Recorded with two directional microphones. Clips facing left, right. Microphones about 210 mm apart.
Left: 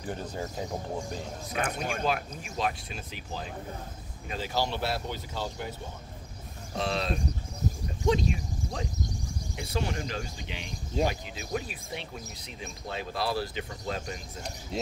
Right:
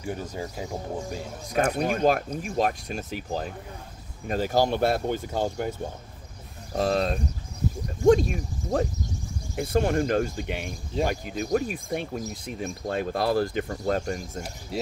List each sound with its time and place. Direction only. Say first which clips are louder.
0.0 s speech: right 3 dB; 10° right (ahead or behind)
1.5 s speech: right 8 dB; 40° right (ahead or behind)
14.7 s speech: right 3 dB; 5° right (ahead or behind)